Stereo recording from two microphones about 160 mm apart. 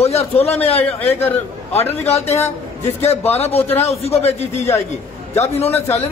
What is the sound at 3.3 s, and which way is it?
A man's voice, 40° left (ahead or behind).